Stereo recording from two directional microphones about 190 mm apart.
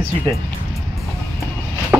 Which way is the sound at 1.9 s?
5° right (ahead or behind).